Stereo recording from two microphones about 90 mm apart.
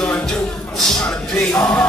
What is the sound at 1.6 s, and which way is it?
Music, 20° left (ahead or behind).